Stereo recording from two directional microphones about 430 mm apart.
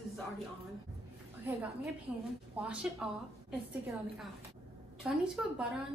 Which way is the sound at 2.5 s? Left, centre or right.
Centre.